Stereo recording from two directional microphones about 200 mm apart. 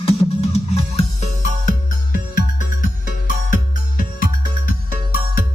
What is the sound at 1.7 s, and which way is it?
Music, 40° left (ahead or behind).